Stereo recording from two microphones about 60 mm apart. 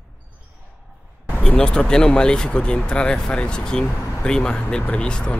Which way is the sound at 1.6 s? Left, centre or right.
Centre.